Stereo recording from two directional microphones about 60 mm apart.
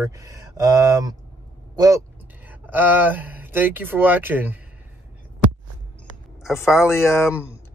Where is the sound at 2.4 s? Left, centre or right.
Right.